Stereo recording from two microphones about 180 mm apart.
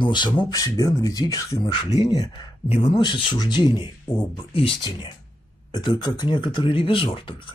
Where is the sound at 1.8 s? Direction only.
35° left (ahead or behind).